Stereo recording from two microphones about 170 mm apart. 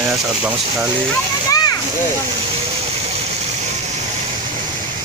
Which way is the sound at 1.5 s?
20° left (ahead or behind).